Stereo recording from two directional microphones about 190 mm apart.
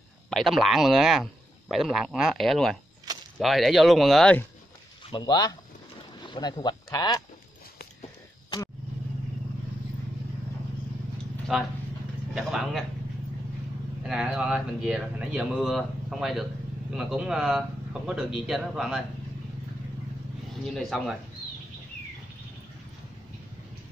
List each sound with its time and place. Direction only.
0.3 s speech: centre (ahead or behind)
5.1 s speech: 20° left (ahead or behind)
11.5 s speech: centre (ahead or behind)
14.0 s speech: 5° right (ahead or behind)
20.7 s speech: centre (ahead or behind)